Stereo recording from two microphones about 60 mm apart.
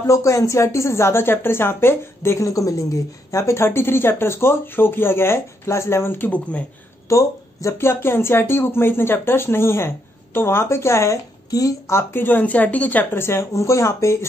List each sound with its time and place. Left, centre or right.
0.0 s a woman's voice: left
2.3 s a woman's voice: left
7.1 s a woman's voice: left
12.2 s a woman's voice: left
13.1 s a woman's voice: left